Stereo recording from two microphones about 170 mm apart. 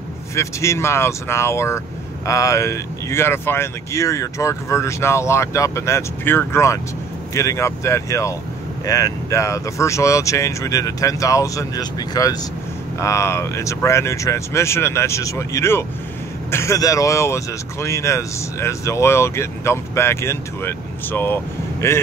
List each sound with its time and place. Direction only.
0.4 s speech: 15° left (ahead or behind)